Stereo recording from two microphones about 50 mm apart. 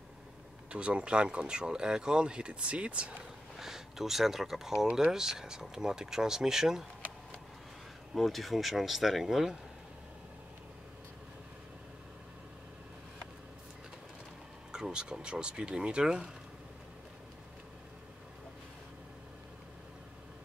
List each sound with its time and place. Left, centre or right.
0.7 s speech: right
3.5 s speech: centre
8.1 s speech: centre
14.7 s speech: centre